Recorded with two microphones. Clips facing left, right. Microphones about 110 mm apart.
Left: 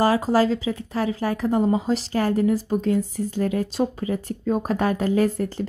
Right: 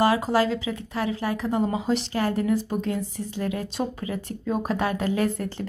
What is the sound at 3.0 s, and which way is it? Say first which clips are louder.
A woman's voice: left 6 dB; 45° left (ahead or behind).